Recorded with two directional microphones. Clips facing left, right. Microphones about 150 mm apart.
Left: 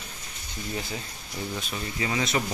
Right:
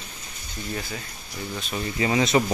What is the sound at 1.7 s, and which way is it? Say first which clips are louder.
Speech: right 7 dB; 25° right (ahead or behind).